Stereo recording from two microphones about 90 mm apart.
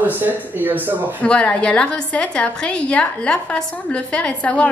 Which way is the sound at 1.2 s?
15° left (ahead or behind).